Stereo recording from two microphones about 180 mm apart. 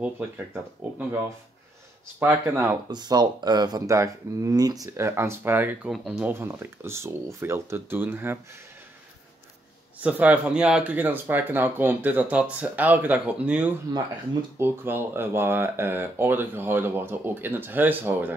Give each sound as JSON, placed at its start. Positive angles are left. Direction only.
{"t": 0.9, "sound": "speech", "side_deg": -10}
{"t": 2.9, "sound": "speech", "side_deg": -25}
{"t": 9.9, "sound": "speech", "side_deg": -10}